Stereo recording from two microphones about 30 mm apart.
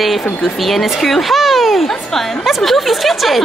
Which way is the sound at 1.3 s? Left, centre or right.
Centre.